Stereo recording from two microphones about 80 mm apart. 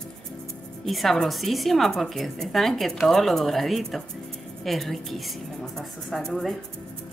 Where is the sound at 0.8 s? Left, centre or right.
Centre.